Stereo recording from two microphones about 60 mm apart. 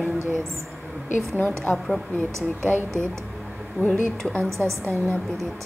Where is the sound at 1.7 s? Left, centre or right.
Left.